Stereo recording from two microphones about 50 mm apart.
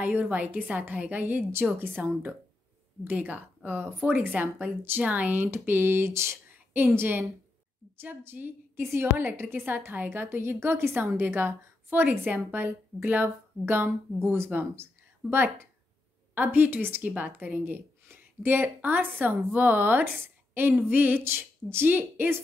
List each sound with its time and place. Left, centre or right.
0.0 s a woman's voice: right
5.5 s a woman's voice: right
6.7 s a woman's voice: right
14.8 s a sound: right
16.3 s a woman's voice: right
17.0 s a woman's voice: right
18.0 s a sound: right
18.8 s a woman's voice: right